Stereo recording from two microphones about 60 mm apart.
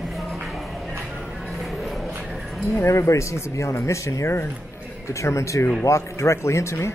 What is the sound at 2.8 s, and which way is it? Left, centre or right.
Speech, left.